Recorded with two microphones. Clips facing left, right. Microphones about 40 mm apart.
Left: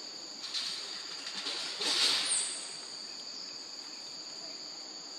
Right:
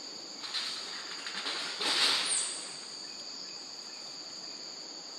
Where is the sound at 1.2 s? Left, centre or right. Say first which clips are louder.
Right 3 dB; right.